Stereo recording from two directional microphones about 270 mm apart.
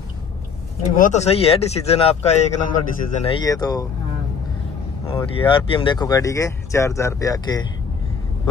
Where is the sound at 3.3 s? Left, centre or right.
Centre.